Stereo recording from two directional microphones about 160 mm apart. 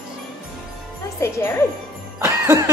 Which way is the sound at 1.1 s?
15° left (ahead or behind).